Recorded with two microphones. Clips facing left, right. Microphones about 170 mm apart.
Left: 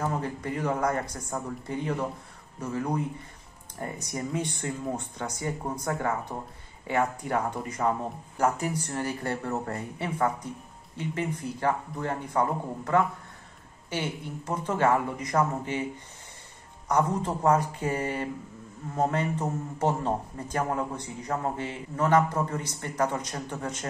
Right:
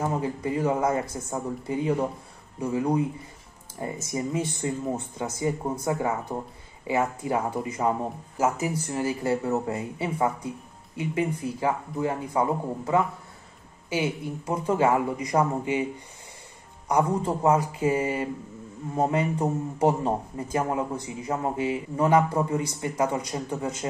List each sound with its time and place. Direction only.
0.0 s a man's voice: 10° right (ahead or behind)
1.0 s a man's voice: 25° right (ahead or behind)
1.7 s a man's voice: 10° right (ahead or behind)
16.9 s a man's voice: 10° right (ahead or behind)